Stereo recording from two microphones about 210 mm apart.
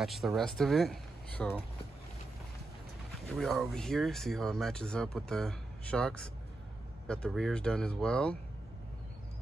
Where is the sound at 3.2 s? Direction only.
Centre (ahead or behind).